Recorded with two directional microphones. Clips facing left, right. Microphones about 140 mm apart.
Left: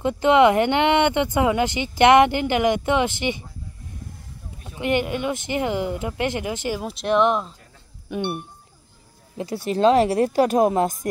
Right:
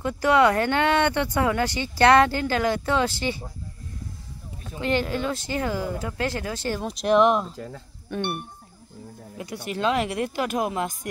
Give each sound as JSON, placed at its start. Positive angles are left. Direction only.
{"t": 0.0, "sound": "speech", "side_deg": 20}
{"t": 4.7, "sound": "speech", "side_deg": 15}
{"t": 6.8, "sound": "speech", "side_deg": 0}
{"t": 7.5, "sound": "speech", "side_deg": -90}
{"t": 8.1, "sound": "speech", "side_deg": 15}
{"t": 9.4, "sound": "speech", "side_deg": 30}